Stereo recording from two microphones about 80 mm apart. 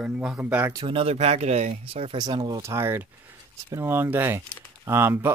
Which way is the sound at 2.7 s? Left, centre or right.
Right.